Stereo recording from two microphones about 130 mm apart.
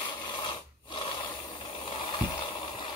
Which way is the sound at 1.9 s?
40° left (ahead or behind).